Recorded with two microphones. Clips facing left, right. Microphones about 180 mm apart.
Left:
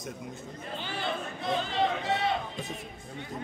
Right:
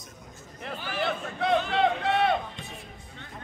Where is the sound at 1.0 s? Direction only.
65° right (ahead or behind).